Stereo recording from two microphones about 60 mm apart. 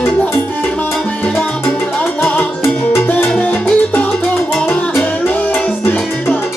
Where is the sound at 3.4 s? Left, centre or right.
Left.